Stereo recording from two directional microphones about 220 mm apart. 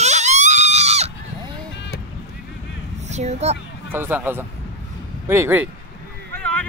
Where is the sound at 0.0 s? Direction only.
30° right (ahead or behind).